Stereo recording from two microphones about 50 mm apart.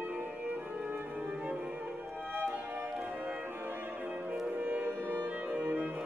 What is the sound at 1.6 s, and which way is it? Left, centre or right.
Music, right.